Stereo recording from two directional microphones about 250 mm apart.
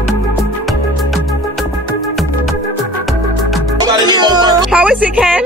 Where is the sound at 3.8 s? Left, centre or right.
Centre.